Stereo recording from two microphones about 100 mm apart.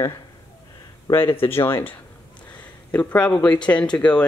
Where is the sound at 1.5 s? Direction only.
25° left (ahead or behind).